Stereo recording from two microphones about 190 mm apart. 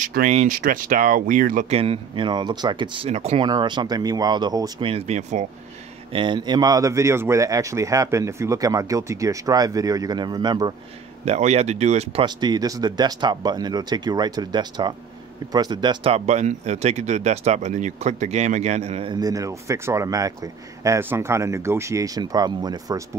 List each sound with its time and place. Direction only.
0.0 s speech: 45° right (ahead or behind)
1.8 s speech: 30° right (ahead or behind)
3.4 s speech: 20° right (ahead or behind)
6.1 s speech: 25° right (ahead or behind)
11.2 s speech: 35° right (ahead or behind)
12.4 s speech: 20° right (ahead or behind)